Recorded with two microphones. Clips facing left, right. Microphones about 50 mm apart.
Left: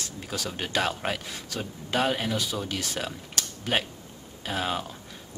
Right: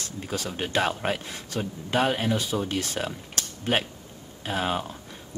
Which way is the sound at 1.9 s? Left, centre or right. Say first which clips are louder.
Right 2 dB; centre.